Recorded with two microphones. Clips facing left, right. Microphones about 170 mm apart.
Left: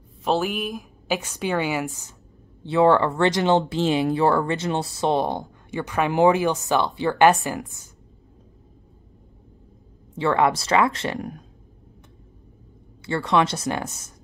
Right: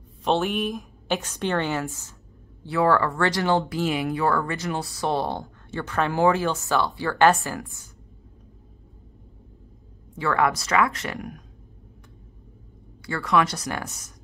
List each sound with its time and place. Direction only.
0.2 s a woman's voice: centre (ahead or behind); by 7.8 s 20° left (ahead or behind)
10.1 s speech: 25° left (ahead or behind)
13.0 s speech: 25° left (ahead or behind)